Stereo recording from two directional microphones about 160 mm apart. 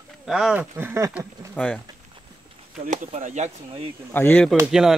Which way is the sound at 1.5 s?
5° left (ahead or behind).